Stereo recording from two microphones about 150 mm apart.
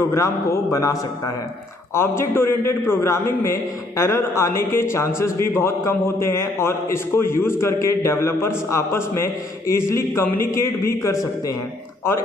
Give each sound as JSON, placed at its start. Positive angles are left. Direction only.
{"t": 0.1, "sound": "a man's voice", "side_deg": 20}